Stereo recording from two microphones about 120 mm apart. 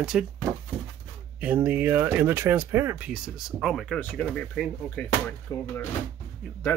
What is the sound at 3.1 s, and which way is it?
Speech, 5° right (ahead or behind).